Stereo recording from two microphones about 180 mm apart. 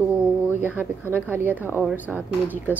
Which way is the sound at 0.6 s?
10° right (ahead or behind).